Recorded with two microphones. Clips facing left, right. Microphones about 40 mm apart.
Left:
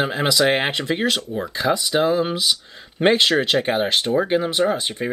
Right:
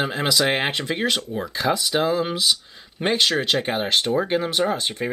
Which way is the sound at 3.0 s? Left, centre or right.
Centre.